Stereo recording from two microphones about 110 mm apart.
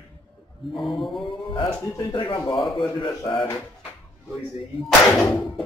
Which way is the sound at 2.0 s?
45° left (ahead or behind).